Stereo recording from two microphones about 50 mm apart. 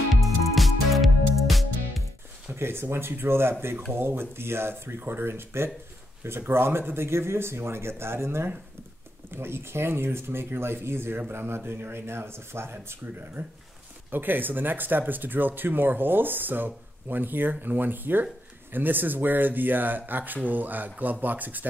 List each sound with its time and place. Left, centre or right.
0.1 s music: centre
2.5 s speech: right